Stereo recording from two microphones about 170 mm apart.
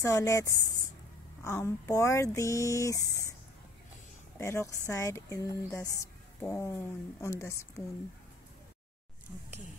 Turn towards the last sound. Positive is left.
turn(degrees=15)  # may be behind; listen again after turning